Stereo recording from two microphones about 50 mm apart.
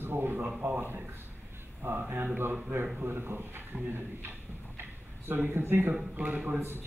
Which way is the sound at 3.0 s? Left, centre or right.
Right.